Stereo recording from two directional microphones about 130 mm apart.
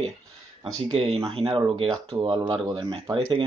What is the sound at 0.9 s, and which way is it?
Speech, 45° right (ahead or behind).